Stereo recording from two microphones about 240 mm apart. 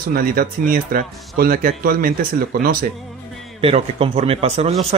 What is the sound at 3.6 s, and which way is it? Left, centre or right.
Speech, right.